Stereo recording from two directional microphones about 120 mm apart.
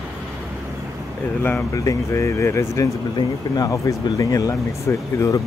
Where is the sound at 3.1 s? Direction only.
35° left (ahead or behind).